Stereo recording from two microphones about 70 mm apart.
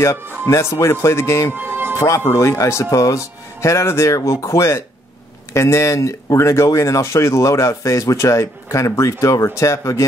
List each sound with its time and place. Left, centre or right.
0.5 s speech: left
1.5 s music: right
2.0 s speech: left